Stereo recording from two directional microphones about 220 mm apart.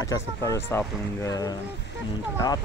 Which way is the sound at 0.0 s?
15° left (ahead or behind).